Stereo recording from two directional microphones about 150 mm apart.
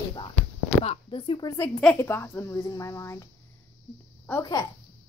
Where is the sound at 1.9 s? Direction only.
15° left (ahead or behind).